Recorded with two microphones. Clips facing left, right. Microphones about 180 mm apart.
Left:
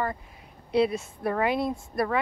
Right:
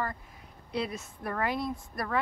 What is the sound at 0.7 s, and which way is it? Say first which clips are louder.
Speech: left 10 dB; 70° left (ahead or behind).